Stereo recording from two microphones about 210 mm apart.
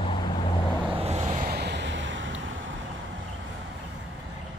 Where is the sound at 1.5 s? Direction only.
50° right (ahead or behind).